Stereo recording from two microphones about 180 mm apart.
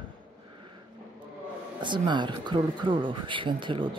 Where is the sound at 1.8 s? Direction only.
25° right (ahead or behind).